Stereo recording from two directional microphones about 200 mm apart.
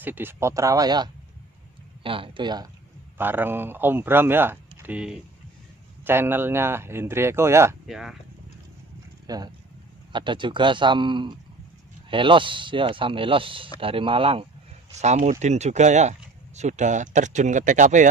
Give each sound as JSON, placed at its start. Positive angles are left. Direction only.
{"t": 0.0, "sound": "speech", "side_deg": -10}
{"t": 3.2, "sound": "speech", "side_deg": -10}
{"t": 7.8, "sound": "speech", "side_deg": 0}
{"t": 9.3, "sound": "speech", "side_deg": -20}